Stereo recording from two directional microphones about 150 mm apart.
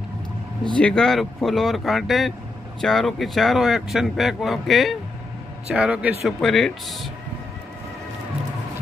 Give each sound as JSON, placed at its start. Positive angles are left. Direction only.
{"t": 0.7, "sound": "speech", "side_deg": 5}